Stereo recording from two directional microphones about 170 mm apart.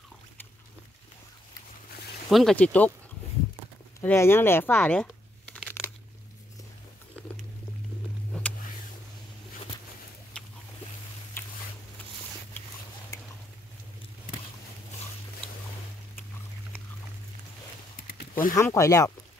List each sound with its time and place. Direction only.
2.2 s speech: centre (ahead or behind)
4.0 s speech: 15° left (ahead or behind)
5.7 s crunch: 10° left (ahead or behind)
8.3 s vehicle: 10° left (ahead or behind)
18.1 s a sound: 55° left (ahead or behind)
18.5 s speech: 20° left (ahead or behind)